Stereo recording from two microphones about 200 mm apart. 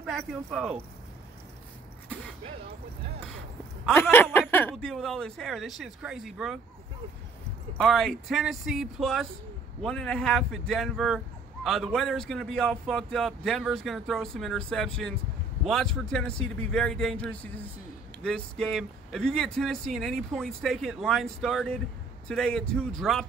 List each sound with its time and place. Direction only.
0.0 s speech: centre (ahead or behind)
3.8 s speech: 10° left (ahead or behind)
7.7 s speech: centre (ahead or behind)